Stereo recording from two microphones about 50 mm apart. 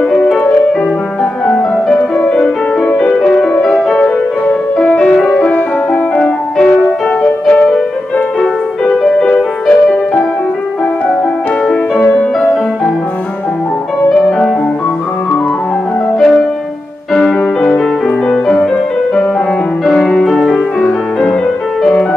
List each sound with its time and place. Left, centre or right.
2.0 s music: left
3.6 s music: centre
6.1 s music: left
6.8 s music: left
8.9 s music: centre
16.2 s music: centre
20.1 s music: centre
20.8 s music: centre